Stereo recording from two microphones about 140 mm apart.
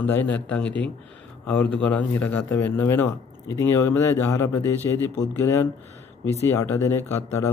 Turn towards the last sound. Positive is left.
turn(degrees=20)  # may be behind; listen again after turning